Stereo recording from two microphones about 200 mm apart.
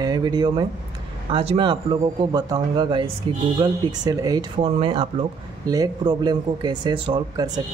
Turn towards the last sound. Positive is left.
turn(degrees=-25)  # may be behind; listen again after turning